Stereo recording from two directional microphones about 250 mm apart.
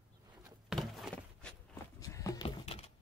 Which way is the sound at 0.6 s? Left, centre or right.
Centre.